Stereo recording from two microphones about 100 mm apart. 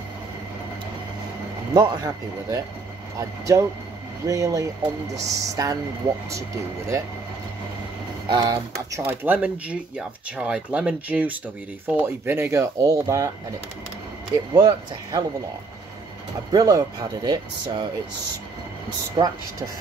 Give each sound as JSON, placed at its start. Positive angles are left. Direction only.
{"t": 1.7, "sound": "speech", "side_deg": -45}
{"t": 8.3, "sound": "speech", "side_deg": -50}
{"t": 9.0, "sound": "speech", "side_deg": -20}
{"t": 14.5, "sound": "speech", "side_deg": -50}
{"t": 16.5, "sound": "speech", "side_deg": -40}
{"t": 19.2, "sound": "speech", "side_deg": -55}